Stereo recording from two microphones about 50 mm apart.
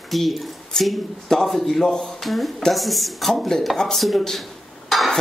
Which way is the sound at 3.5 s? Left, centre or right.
Centre.